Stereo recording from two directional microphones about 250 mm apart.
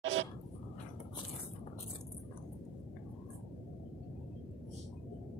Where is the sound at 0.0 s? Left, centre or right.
Right.